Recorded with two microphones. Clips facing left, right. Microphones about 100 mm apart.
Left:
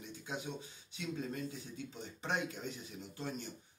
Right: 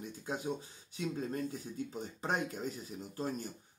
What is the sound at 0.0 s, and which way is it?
Speech, 40° right (ahead or behind).